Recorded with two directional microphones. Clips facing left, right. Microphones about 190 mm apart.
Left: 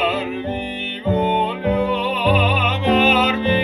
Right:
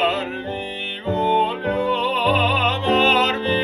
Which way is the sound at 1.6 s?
10° left (ahead or behind).